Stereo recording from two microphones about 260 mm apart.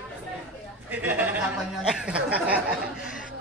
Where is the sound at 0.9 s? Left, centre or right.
Centre.